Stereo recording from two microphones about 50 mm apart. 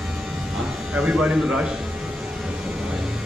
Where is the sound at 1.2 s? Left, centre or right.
Centre.